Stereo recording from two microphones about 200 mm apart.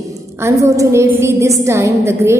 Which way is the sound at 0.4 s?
15° right (ahead or behind).